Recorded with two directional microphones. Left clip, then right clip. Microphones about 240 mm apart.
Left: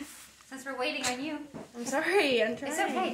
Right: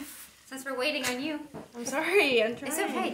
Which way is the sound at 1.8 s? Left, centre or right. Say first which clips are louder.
Right 2 dB; right.